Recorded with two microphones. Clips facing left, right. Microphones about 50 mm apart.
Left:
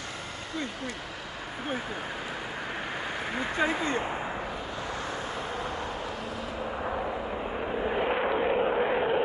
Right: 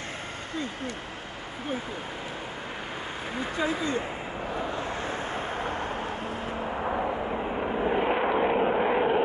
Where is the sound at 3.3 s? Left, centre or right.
Left.